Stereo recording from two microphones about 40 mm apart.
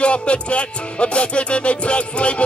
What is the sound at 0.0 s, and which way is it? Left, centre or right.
Music, left.